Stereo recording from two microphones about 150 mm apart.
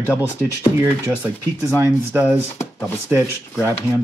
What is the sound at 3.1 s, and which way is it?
Speech, 5° right (ahead or behind).